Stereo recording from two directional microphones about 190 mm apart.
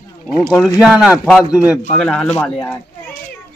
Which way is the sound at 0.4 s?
Centre (ahead or behind).